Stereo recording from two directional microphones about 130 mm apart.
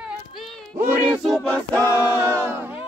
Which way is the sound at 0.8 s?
15° right (ahead or behind).